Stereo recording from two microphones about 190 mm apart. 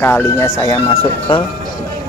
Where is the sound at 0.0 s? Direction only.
15° left (ahead or behind).